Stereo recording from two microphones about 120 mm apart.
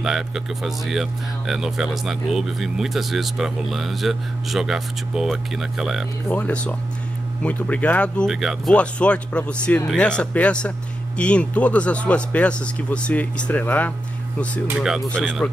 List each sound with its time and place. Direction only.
0.0 s speech: 5° right (ahead or behind)
6.3 s speech: 10° left (ahead or behind)
8.3 s speech: centre (ahead or behind)
8.7 s speech: 10° left (ahead or behind)
14.8 s speech: 5° right (ahead or behind)
15.0 s speech: 5° left (ahead or behind)